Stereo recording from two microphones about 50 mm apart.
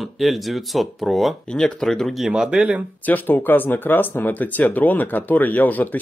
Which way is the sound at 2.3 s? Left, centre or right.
Centre.